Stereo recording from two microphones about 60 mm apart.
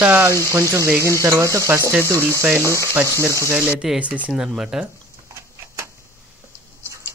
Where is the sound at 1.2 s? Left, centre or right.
Right.